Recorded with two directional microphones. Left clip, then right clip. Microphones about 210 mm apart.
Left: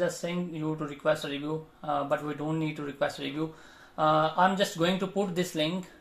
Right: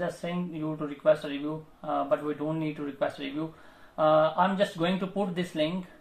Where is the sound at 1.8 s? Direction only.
45° left (ahead or behind).